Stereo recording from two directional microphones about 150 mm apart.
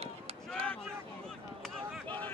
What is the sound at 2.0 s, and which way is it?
Vehicle, 10° left (ahead or behind).